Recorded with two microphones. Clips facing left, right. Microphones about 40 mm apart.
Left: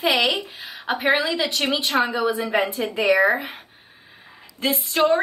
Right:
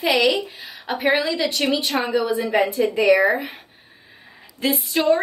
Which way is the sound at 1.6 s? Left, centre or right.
Centre.